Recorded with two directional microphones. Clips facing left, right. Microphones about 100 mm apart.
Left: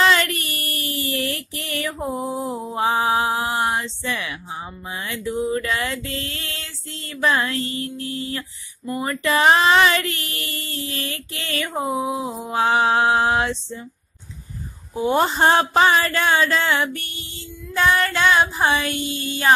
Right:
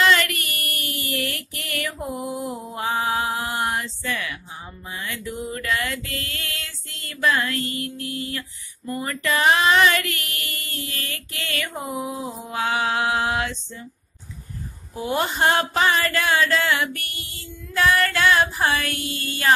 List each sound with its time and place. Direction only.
0.0 s a sound: 25° left (ahead or behind)
9.0 s speech: 25° left (ahead or behind)
15.0 s speech: 30° left (ahead or behind)